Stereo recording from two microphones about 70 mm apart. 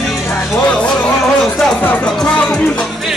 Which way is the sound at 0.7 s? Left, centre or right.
Centre.